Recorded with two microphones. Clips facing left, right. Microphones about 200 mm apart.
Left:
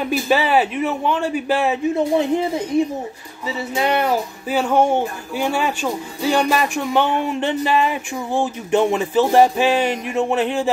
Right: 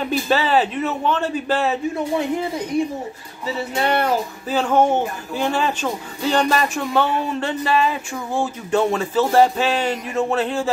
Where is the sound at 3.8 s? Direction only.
15° left (ahead or behind).